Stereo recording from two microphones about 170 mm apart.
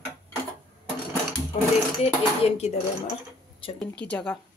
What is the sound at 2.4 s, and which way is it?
Speech, 35° left (ahead or behind).